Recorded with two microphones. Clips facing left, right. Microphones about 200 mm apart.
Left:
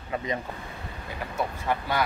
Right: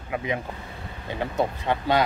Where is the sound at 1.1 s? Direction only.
25° right (ahead or behind).